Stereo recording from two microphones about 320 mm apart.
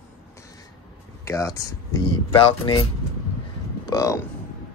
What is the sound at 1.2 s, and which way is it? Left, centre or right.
Speech, centre.